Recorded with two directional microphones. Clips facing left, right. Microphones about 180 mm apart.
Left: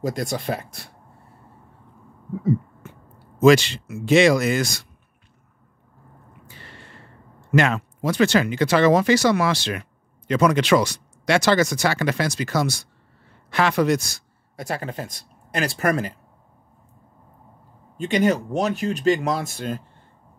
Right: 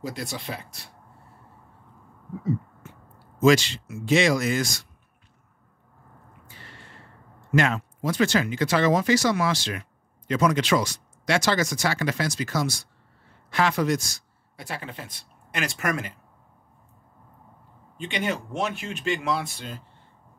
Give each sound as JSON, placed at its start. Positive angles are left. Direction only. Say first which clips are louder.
{"t": 0.0, "sound": "speech", "louder": "left 7 dB", "side_deg": 45}
{"t": 3.3, "sound": "speech", "louder": "left 4 dB", "side_deg": 65}
{"t": 7.5, "sound": "speech", "louder": "left 3 dB", "side_deg": 70}
{"t": 14.6, "sound": "speech", "louder": "left 7 dB", "side_deg": 45}
{"t": 17.9, "sound": "speech", "louder": "left 9 dB", "side_deg": 40}